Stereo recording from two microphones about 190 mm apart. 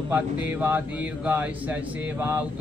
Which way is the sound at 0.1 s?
10° right (ahead or behind).